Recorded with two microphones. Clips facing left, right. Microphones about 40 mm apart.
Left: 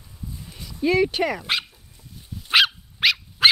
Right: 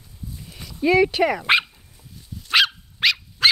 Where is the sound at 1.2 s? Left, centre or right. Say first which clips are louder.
Right 6 dB; right.